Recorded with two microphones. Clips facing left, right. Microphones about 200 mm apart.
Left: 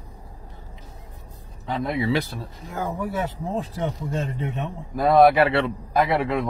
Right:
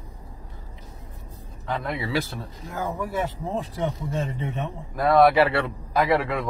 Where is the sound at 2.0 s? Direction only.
20° left (ahead or behind).